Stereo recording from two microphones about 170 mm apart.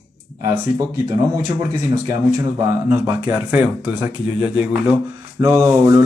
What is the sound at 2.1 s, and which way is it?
Speech, 20° right (ahead or behind).